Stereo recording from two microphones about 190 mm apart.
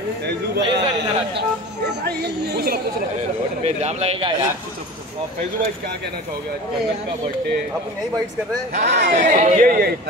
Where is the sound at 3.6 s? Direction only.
35° right (ahead or behind).